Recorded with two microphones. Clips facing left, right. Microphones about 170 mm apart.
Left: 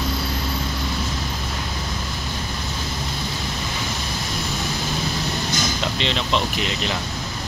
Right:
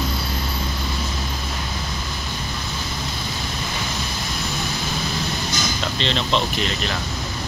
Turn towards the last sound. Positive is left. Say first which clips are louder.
# even
turn(degrees=15)  # may be behind; listen again after turning